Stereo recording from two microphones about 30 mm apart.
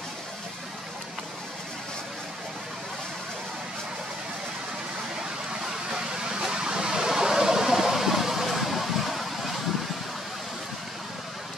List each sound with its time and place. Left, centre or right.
5.9 s vehicle: right
6.4 s a sound: right
8.5 s vehicle: centre